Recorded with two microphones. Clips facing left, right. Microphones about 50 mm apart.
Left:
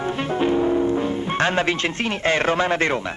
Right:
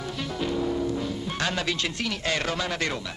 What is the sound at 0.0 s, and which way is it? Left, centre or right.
Speech, left.